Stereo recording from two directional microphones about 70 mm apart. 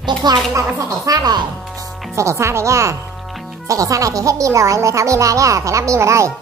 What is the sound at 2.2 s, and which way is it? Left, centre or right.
Speech, right.